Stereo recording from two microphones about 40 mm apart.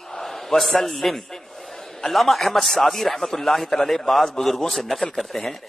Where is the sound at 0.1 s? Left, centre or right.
Centre.